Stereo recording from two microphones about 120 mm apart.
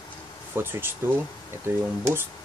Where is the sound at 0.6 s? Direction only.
20° right (ahead or behind).